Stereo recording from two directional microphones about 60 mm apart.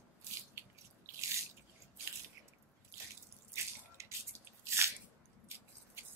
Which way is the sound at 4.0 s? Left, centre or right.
Right.